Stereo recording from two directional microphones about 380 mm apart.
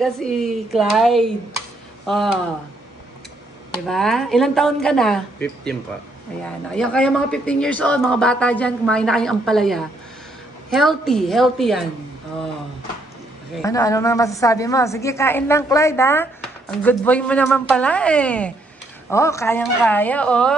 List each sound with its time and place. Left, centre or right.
0.0 s speech: centre
3.8 s speech: centre
13.6 s a woman's voice: centre